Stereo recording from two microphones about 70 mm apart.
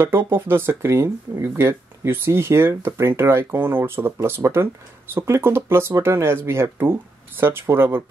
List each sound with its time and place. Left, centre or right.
0.0 s speech: right